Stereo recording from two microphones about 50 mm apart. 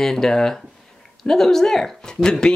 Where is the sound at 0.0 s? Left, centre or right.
Centre.